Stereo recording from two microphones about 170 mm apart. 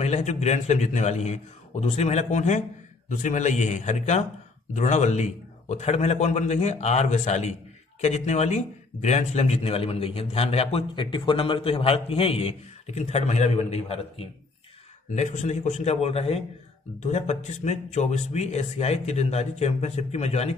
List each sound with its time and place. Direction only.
0.0 s a man's voice: 40° left (ahead or behind)